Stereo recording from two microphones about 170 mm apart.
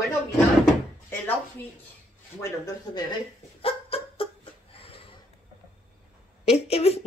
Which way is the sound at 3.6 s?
35° left (ahead or behind).